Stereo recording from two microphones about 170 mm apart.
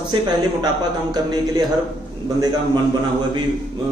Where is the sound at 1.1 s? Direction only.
25° right (ahead or behind).